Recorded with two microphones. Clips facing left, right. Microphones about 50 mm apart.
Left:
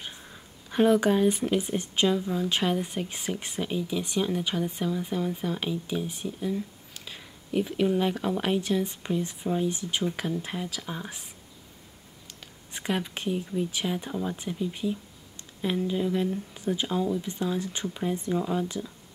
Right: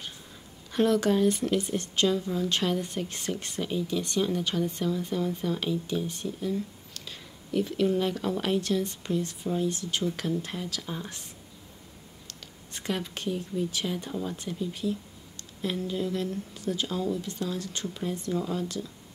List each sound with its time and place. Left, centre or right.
0.7 s speech: centre
12.3 s speech: centre